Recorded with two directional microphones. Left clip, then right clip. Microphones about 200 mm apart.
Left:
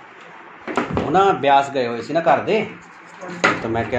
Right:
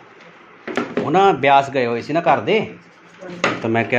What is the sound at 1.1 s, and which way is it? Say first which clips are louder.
Speech: right 2 dB; 50° right (ahead or behind).